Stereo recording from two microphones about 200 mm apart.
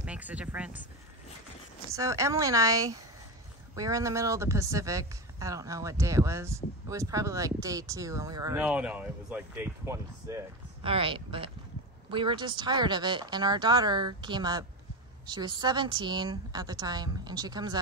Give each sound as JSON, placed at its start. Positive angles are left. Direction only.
{"t": 0.0, "sound": "speech", "side_deg": -5}
{"t": 2.0, "sound": "speech", "side_deg": -15}
{"t": 8.6, "sound": "speech", "side_deg": -5}
{"t": 10.8, "sound": "speech", "side_deg": -25}